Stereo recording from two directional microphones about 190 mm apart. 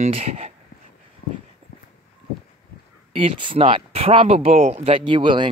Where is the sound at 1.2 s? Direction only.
50° left (ahead or behind).